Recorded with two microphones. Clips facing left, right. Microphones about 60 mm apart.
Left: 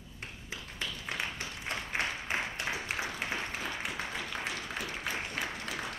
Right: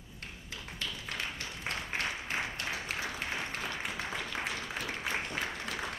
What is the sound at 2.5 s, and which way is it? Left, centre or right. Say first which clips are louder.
Applause: left 2 dB; centre.